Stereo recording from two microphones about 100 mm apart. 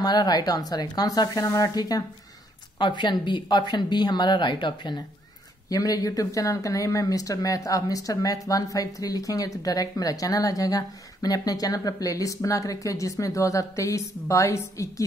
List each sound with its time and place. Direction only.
0.0 s speech: 40° left (ahead or behind)
2.8 s a woman's voice: 50° left (ahead or behind)
5.7 s speech: 40° left (ahead or behind)